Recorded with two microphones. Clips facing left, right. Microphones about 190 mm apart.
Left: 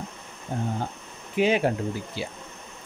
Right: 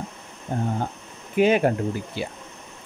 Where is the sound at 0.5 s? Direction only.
55° right (ahead or behind).